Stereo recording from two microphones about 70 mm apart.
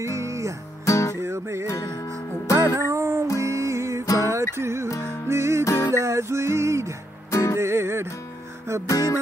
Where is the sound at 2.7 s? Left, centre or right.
Right.